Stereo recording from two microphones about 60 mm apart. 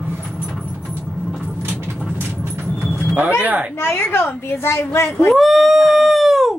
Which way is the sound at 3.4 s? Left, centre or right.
Right.